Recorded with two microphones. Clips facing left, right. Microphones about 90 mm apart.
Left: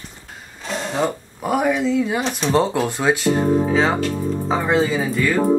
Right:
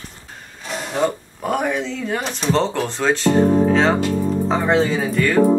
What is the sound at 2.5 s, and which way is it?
Music, 10° left (ahead or behind).